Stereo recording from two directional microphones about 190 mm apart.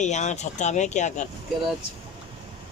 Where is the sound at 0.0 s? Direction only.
40° left (ahead or behind).